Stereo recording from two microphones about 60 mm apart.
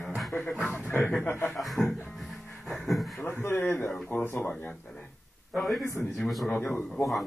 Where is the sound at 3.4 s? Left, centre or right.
Left.